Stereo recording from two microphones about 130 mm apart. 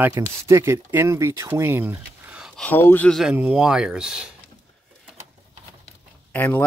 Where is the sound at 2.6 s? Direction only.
15° left (ahead or behind).